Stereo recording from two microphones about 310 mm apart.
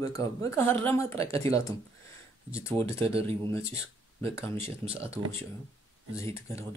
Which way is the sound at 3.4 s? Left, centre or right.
Centre.